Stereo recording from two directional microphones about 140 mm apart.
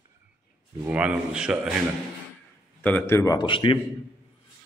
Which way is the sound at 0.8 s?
10° right (ahead or behind).